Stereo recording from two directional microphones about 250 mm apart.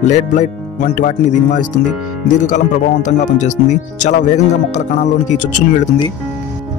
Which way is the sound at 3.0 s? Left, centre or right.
Left.